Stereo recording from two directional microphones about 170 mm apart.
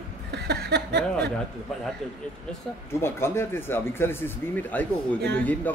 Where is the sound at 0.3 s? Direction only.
75° right (ahead or behind).